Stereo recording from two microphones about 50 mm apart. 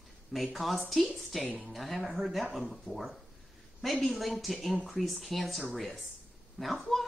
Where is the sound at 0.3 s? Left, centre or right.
Centre.